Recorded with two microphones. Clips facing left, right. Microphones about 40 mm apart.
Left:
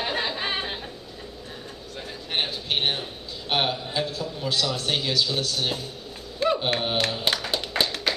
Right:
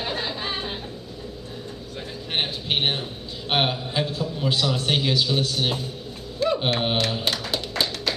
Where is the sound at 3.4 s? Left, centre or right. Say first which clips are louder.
Right 2 dB; centre.